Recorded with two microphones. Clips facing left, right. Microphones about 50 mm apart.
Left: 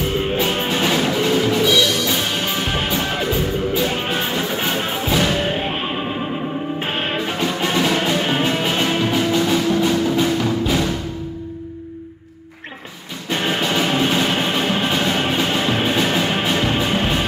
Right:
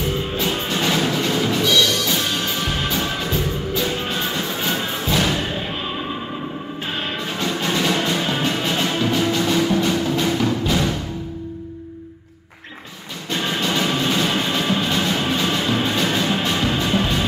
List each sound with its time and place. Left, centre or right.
0.4 s music: left
0.7 s music: centre
0.9 s music: centre
3.9 s music: left; by 5.3 s centre
5.4 s music: left
7.3 s music: centre
8.2 s music: left
8.5 s music: centre
13.3 s music: left
14.1 s music: centre
14.4 s music: left
16.6 s music: left